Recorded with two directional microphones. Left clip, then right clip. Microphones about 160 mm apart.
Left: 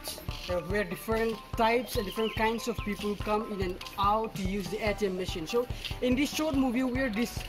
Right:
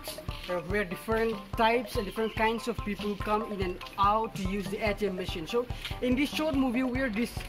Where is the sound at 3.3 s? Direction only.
20° left (ahead or behind).